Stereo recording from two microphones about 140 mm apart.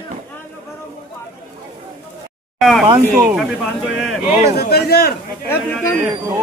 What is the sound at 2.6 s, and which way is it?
Speech, centre (ahead or behind).